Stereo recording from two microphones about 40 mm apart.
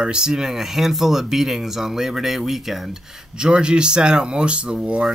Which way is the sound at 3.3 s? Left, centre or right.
Right.